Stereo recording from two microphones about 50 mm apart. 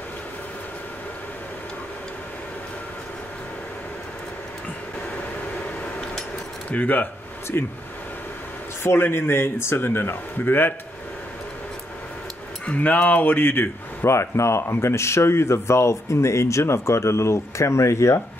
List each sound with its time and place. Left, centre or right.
6.7 s speech: left
8.8 s speech: left
9.8 s speech: left
12.6 s speech: left
14.1 s speech: left